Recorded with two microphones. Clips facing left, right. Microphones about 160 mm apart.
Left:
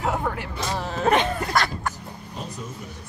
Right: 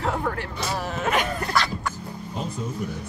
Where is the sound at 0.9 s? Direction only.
35° left (ahead or behind).